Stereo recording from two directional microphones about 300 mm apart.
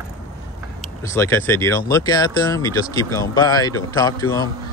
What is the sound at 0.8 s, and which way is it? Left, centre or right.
A man's voice, centre.